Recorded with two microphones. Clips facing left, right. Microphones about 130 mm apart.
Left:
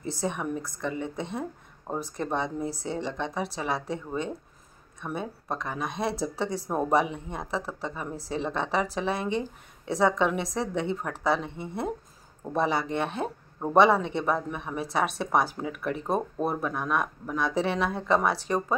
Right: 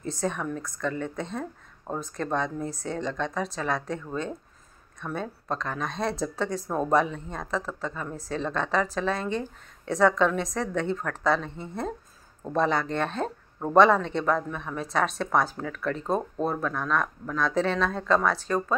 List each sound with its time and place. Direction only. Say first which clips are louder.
0.2 s speech: right 1 dB; 15° left (ahead or behind)
2.8 s speech: right 1 dB; 20° left (ahead or behind)